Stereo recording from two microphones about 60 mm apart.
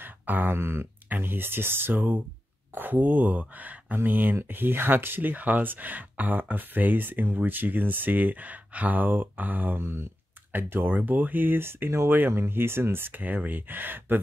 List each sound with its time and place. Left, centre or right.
0.0 s speech: right
9.8 s speech: right
13.2 s speech: right